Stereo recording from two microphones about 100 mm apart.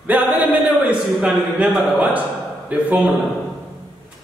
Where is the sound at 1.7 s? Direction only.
10° right (ahead or behind).